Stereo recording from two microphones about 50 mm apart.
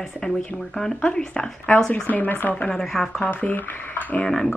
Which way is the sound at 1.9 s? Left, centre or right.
Left.